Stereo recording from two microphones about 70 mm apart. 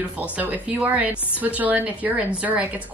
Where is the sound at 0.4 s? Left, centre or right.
Right.